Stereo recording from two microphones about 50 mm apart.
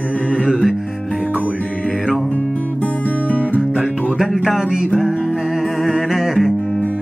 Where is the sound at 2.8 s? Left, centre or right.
Left.